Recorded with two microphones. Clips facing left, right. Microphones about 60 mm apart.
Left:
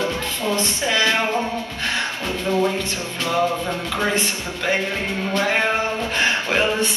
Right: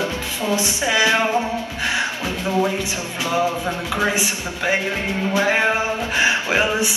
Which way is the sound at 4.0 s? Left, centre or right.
Centre.